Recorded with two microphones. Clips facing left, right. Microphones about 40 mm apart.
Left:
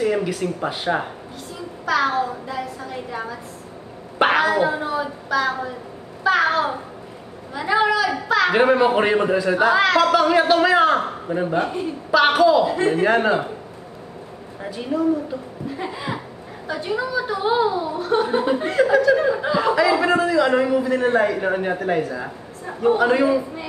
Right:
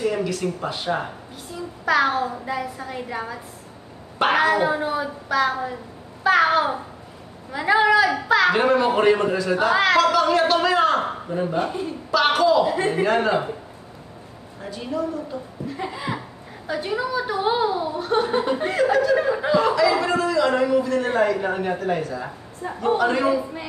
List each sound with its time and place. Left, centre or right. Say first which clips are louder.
0.0 s speech: left 2 dB; centre
1.9 s a woman's voice: even; centre
4.4 s a woman's voice: even; centre
7.7 s a woman's voice: right 2 dB; centre
8.5 s a man's voice: left 2 dB; centre
10.1 s a man's voice: left 2 dB; centre
12.6 s a woman's voice: left 2 dB; centre
13.0 s a man's voice: left 1 dB; centre
14.7 s a man's voice: left 6 dB; centre
16.6 s a woman's voice: left 1 dB; centre
18.2 s a man's voice: left 2 dB; centre
19.9 s a man's voice: left 3 dB; centre